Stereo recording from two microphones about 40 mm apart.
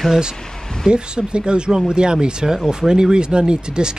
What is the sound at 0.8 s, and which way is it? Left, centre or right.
Speech, centre.